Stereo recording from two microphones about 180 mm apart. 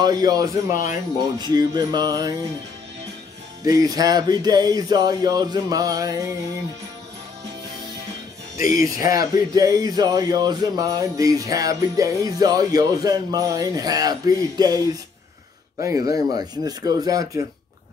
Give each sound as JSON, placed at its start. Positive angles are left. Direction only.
{"t": 0.0, "sound": "speech", "side_deg": -20}
{"t": 3.6, "sound": "speech", "side_deg": -20}
{"t": 8.5, "sound": "speech", "side_deg": 50}
{"t": 9.1, "sound": "speech", "side_deg": -20}
{"t": 16.1, "sound": "speech", "side_deg": -20}